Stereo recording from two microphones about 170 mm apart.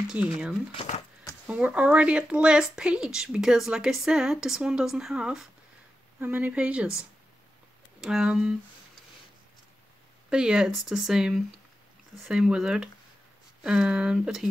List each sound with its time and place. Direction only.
0.1 s speech: 5° right (ahead or behind)
0.7 s speech: 40° left (ahead or behind)
1.5 s speech: 5° right (ahead or behind)
8.0 s speech: 5° right (ahead or behind)
10.3 s speech: 5° right (ahead or behind)